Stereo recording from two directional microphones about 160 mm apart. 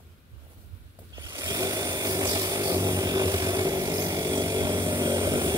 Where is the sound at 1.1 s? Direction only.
25° right (ahead or behind).